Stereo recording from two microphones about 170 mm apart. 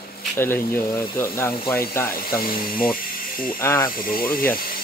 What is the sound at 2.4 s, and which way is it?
Speech, 55° left (ahead or behind).